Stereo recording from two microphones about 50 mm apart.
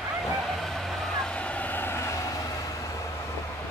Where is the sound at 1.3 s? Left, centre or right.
Left.